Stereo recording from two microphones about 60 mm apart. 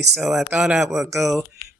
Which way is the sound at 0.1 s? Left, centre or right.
Centre.